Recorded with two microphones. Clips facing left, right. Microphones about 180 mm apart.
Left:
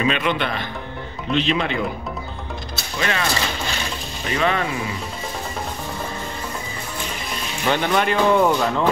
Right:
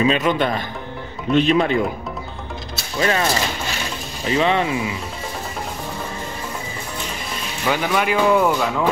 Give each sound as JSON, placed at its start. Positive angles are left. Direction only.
{"t": 0.0, "sound": "a man's voice", "side_deg": -35}
{"t": 3.0, "sound": "a man's voice", "side_deg": -35}
{"t": 4.4, "sound": "speech", "side_deg": -25}
{"t": 7.6, "sound": "speech", "side_deg": -5}